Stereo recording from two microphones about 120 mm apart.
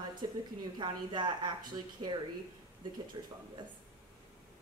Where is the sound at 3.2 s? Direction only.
40° right (ahead or behind).